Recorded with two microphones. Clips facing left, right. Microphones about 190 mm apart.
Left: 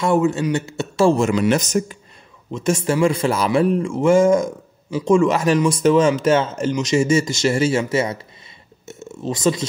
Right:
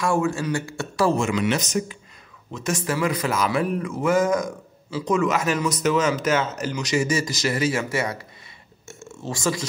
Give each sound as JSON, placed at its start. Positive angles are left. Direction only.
{"t": 0.0, "sound": "speech", "side_deg": 20}
{"t": 1.1, "sound": "speech", "side_deg": 35}
{"t": 2.5, "sound": "speech", "side_deg": 25}